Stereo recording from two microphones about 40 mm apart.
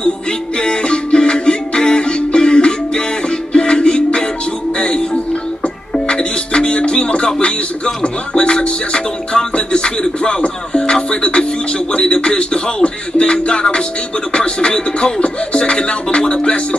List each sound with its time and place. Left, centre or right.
0.6 s music: left
11.9 s speech: left